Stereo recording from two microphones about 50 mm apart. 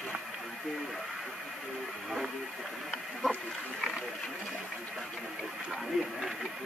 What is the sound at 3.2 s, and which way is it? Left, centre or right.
Pig, centre.